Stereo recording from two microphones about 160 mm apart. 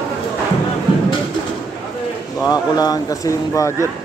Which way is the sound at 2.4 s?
25° left (ahead or behind).